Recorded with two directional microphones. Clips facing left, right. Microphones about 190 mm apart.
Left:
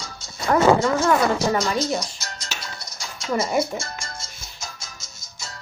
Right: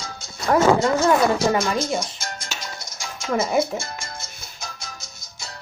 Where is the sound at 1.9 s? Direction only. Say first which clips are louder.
Right 2 dB; 50° right (ahead or behind).